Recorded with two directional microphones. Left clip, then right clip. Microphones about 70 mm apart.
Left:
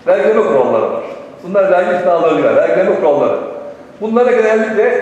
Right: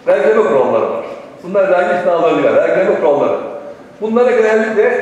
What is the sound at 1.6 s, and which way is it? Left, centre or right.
A man's voice, right.